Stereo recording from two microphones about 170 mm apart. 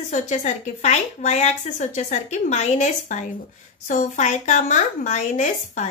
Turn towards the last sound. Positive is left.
turn(degrees=45)  # may be behind; listen again after turning